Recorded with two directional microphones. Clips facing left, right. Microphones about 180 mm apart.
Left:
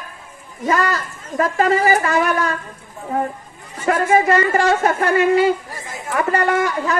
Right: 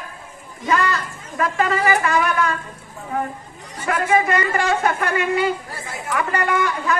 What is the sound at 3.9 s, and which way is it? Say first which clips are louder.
Speech: left 4 dB; 40° left (ahead or behind).